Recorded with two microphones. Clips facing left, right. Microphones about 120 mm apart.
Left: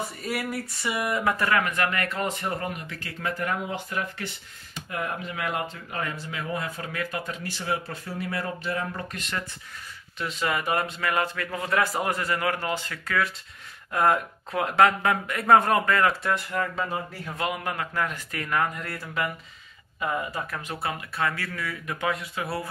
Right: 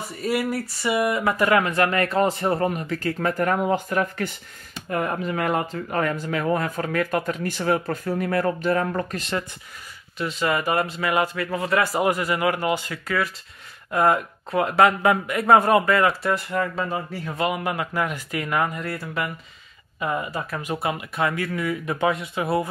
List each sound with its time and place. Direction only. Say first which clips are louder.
0.2 s speech: right 10 dB; centre (ahead or behind)
1.5 s speech: right 5 dB; 30° right (ahead or behind); by 9.0 s 50° right (ahead or behind)
10.1 s speech: right 4 dB; centre (ahead or behind)
20.8 s speech: right 3 dB; 15° right (ahead or behind)